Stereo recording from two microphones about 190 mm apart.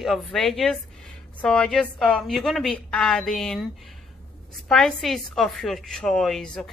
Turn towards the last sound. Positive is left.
turn(degrees=5)  # may be behind; listen again after turning